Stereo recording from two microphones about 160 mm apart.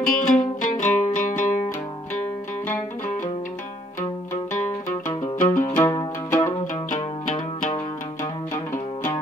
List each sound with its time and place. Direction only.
0.0 s music: 55° left (ahead or behind)
5.2 s music: 55° left (ahead or behind)
5.8 s music: 20° left (ahead or behind)
6.9 s music: 55° left (ahead or behind)